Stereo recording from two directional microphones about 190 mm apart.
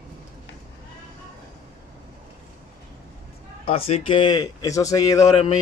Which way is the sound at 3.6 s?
30° left (ahead or behind).